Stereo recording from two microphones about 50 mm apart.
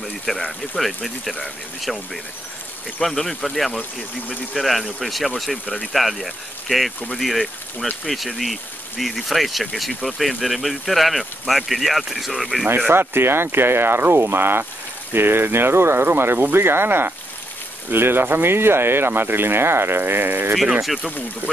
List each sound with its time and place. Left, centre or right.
0.5 s speech: centre
3.0 s speech: centre
12.9 s speech: right
20.8 s speech: centre